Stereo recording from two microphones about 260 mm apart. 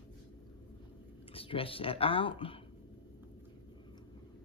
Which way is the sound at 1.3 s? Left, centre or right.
Left.